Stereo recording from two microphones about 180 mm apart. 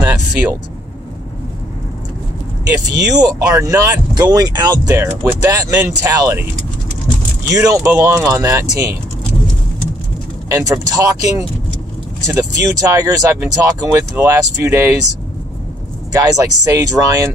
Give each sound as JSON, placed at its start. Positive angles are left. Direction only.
{"t": 0.0, "sound": "vehicle", "side_deg": -10}
{"t": 3.1, "sound": "speech", "side_deg": -20}
{"t": 7.5, "sound": "speech", "side_deg": -15}
{"t": 10.5, "sound": "speech", "side_deg": -20}
{"t": 16.1, "sound": "speech", "side_deg": -20}